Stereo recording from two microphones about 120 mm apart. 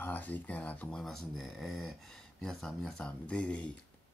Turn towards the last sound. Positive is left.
turn(degrees=10)  # may be behind; listen again after turning